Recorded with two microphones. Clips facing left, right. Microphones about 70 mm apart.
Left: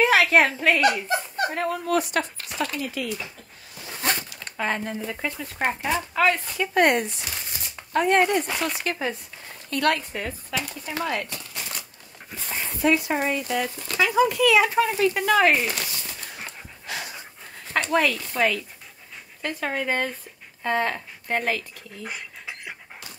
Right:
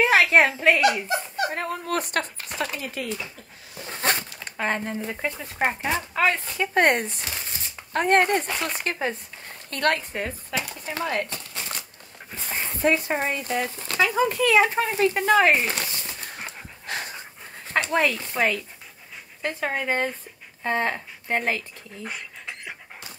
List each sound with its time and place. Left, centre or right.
0.1 s a woman's voice: right
0.7 s speech: left
1.5 s speech: right
3.7 s a sound: right
4.6 s speech: right
16.8 s dog: right
17.7 s speech: right
19.6 s speech: right
22.0 s dog: centre